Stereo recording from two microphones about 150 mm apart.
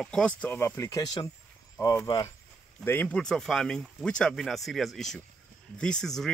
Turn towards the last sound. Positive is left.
turn(degrees=5)  # may be behind; listen again after turning